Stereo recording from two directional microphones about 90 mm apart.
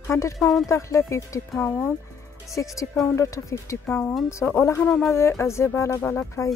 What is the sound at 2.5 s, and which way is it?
Speech, 35° left (ahead or behind).